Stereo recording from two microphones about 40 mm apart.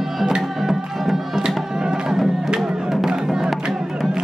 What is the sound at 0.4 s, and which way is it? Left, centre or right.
Music, centre.